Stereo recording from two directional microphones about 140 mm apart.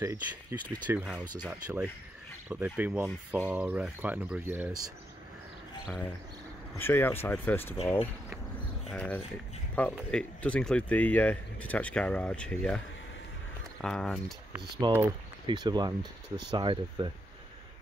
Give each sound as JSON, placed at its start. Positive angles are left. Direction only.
{"t": 0.0, "sound": "speech", "side_deg": -20}
{"t": 6.8, "sound": "speech", "side_deg": 15}
{"t": 14.8, "sound": "speech", "side_deg": -30}